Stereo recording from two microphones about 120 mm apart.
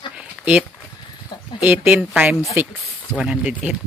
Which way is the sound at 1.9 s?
10° right (ahead or behind).